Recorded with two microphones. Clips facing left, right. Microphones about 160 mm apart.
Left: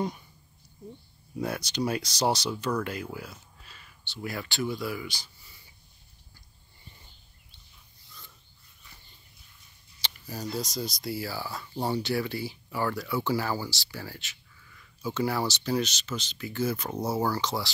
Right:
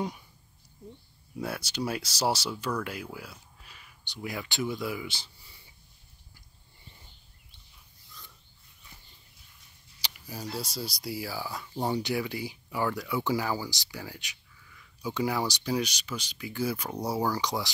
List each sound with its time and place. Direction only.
1.4 s speech: 5° right (ahead or behind); by 5.6 s 25° right (ahead or behind)
10.0 s a sound: 10° right (ahead or behind)
10.5 s speech: 5° right (ahead or behind)